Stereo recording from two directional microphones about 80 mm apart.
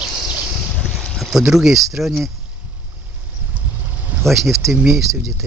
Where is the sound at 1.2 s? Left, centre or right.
Centre.